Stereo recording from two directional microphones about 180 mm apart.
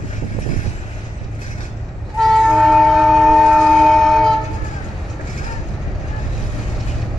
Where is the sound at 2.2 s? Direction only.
Centre (ahead or behind).